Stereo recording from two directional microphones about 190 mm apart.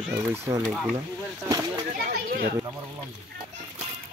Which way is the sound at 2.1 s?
55° right (ahead or behind).